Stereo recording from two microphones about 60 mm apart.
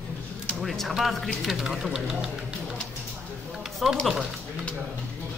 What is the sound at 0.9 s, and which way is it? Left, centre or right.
Speech, centre.